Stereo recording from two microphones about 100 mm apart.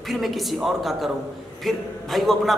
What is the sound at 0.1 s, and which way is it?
Speech, centre (ahead or behind).